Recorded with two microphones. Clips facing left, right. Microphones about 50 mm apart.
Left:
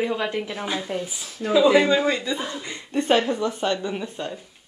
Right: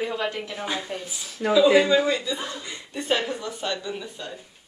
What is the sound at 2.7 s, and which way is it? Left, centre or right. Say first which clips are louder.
Speech: left 6 dB; left.